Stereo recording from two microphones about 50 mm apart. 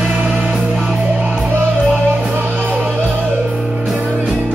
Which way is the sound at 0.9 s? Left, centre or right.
Right.